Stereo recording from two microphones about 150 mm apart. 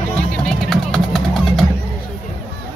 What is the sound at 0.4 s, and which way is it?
Music, 5° left (ahead or behind).